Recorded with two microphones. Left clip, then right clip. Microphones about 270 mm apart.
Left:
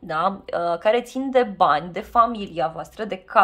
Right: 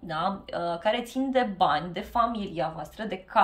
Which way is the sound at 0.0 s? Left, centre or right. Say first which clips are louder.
Left 7 dB; centre.